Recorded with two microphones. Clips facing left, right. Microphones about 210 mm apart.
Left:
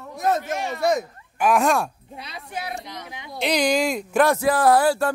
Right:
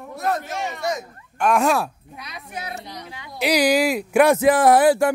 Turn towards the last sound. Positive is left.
turn(degrees=-15)  # may be behind; listen again after turning